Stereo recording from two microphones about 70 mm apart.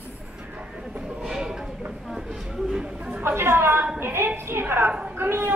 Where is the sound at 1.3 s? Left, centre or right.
Centre.